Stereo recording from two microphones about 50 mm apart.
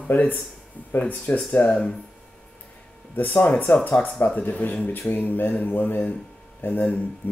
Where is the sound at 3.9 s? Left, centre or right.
Left.